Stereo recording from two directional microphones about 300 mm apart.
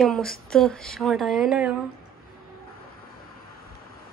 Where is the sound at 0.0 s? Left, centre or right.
Centre.